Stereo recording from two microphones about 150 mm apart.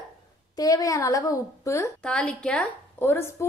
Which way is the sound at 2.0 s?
5° left (ahead or behind).